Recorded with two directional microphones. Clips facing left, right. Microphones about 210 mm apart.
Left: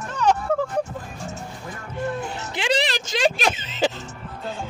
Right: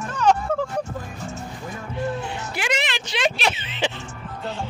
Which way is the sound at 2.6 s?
30° left (ahead or behind).